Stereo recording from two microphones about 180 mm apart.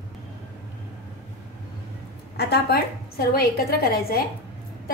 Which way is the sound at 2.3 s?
60° left (ahead or behind).